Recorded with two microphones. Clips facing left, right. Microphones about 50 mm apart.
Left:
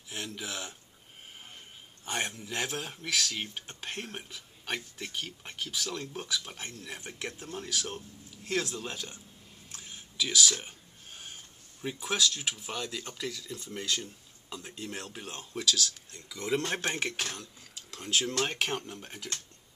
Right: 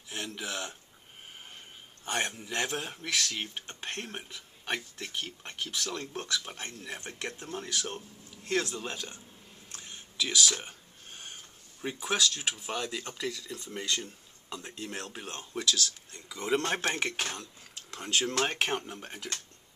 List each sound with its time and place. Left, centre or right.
0.1 s speech: centre
2.0 s a man's voice: centre
9.7 s a sound: centre
11.8 s speech: centre
17.2 s speech: centre